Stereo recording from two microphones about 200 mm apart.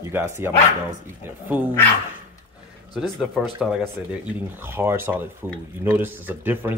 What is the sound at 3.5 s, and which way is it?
Speech, 5° right (ahead or behind).